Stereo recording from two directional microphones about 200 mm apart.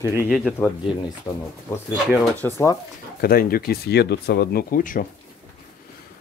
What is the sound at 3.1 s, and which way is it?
Speech, 50° left (ahead or behind).